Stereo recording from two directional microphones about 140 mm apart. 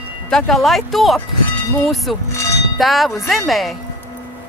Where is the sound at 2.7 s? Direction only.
Centre (ahead or behind).